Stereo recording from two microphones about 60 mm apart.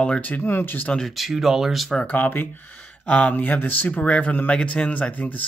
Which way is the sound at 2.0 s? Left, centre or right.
Left.